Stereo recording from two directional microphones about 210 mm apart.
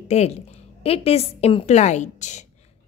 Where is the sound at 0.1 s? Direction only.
30° left (ahead or behind).